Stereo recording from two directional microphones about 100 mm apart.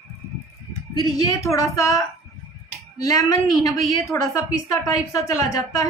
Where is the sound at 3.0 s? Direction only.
30° left (ahead or behind).